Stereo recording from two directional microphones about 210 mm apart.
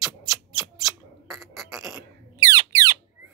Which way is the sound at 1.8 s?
15° right (ahead or behind).